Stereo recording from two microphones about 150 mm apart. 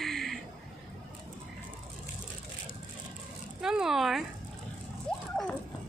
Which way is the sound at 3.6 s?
5° right (ahead or behind).